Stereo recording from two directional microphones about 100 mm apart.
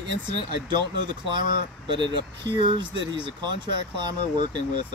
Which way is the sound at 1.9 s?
50° right (ahead or behind).